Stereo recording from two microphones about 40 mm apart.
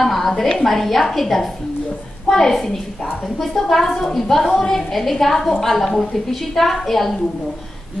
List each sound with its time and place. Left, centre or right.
0.0 s a sound: centre
0.4 s a woman's voice: centre
0.7 s a woman's voice: centre